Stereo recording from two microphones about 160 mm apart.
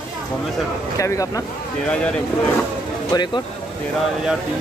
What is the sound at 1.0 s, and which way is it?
Speech, 20° left (ahead or behind).